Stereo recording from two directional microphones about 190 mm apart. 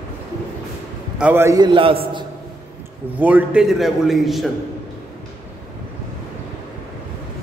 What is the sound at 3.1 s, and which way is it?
A man's voice, 10° right (ahead or behind).